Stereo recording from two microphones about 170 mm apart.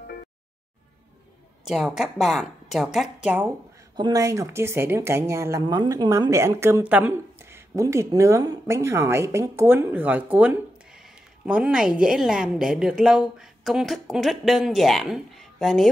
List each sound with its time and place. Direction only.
1.6 s a woman's voice: 5° right (ahead or behind)
3.9 s a woman's voice: 25° right (ahead or behind); by 15.9 s centre (ahead or behind)